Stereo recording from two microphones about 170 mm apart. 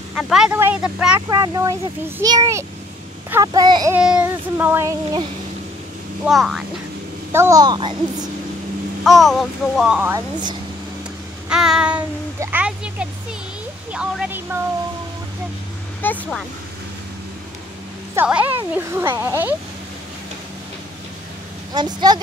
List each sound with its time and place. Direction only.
0.1 s speech: 5° right (ahead or behind)
1.3 s a child's voice: 20° right (ahead or behind)
3.9 s speech: 5° right (ahead or behind)
6.2 s speech: 5° right (ahead or behind)
7.3 s a child's voice: 20° right (ahead or behind)
9.0 s speech: centre (ahead or behind)
11.4 s child singing: 5° right (ahead or behind)
12.4 s speech: 10° right (ahead or behind)
16.0 s speech: 5° left (ahead or behind)
18.1 s speech: 10° right (ahead or behind)
21.7 s a child's voice: 25° right (ahead or behind)